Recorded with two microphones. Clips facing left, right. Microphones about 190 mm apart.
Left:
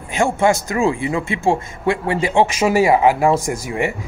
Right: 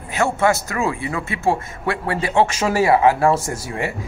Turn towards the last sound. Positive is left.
turn(degrees=15)  # may be behind; listen again after turning